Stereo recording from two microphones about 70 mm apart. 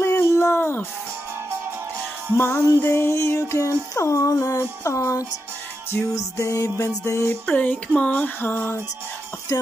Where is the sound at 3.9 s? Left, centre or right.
Left.